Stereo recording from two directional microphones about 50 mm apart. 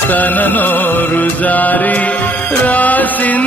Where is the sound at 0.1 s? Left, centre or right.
Left.